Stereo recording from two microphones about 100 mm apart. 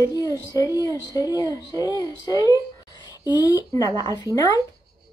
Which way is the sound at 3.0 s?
45° left (ahead or behind).